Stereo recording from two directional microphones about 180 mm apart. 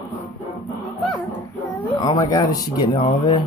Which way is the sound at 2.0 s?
20° left (ahead or behind).